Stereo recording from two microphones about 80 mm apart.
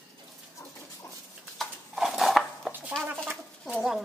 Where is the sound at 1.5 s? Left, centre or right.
Centre.